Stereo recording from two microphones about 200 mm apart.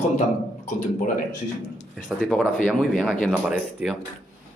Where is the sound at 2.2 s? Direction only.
Centre (ahead or behind).